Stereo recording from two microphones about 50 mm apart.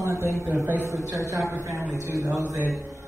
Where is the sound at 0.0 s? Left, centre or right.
Right.